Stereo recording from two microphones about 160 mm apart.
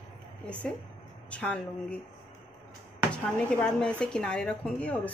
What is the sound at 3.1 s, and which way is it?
Speech, 5° left (ahead or behind).